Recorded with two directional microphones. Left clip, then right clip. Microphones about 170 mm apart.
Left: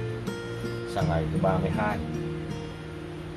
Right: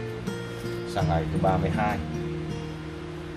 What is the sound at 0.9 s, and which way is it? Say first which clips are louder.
Speech: right 1 dB; centre (ahead or behind).